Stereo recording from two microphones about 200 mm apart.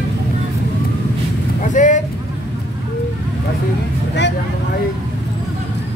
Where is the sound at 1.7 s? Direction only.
40° left (ahead or behind).